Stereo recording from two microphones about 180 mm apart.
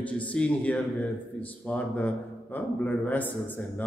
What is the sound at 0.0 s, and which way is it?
A man's voice, 5° left (ahead or behind).